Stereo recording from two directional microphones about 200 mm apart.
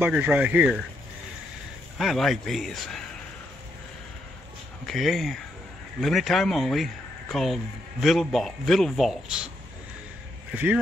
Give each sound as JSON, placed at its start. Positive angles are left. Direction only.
{"t": 0.0, "sound": "speech", "side_deg": -10}
{"t": 2.0, "sound": "speech", "side_deg": 0}
{"t": 4.8, "sound": "speech", "side_deg": 0}
{"t": 10.5, "sound": "speech", "side_deg": -10}